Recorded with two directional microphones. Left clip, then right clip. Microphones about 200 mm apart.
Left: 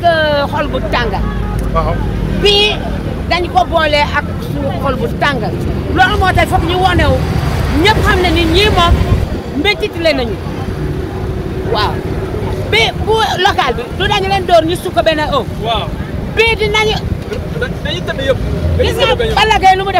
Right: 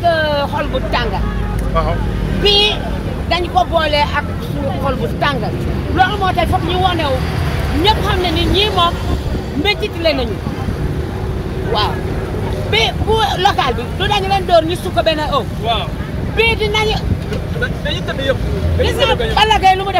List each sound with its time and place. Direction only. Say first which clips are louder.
0.0 s vehicle: left 3 dB; 5° left (ahead or behind)
2.4 s speech: left 2 dB; centre (ahead or behind)
12.7 s speech: left 3 dB; 5° left (ahead or behind)
18.8 s speech: left 3 dB; centre (ahead or behind)